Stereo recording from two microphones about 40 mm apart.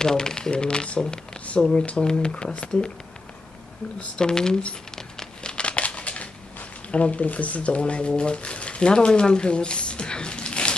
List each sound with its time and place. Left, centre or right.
0.0 s speech: centre
4.2 s speech: centre
4.9 s crumpling: centre; by 6.2 s left
6.9 s speech: left